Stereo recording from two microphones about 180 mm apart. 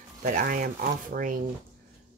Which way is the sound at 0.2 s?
50° right (ahead or behind).